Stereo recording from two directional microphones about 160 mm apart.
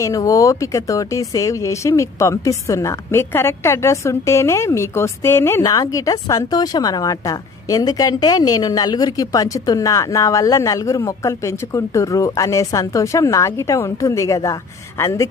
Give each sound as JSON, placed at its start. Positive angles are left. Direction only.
{"t": 0.0, "sound": "speech", "side_deg": 20}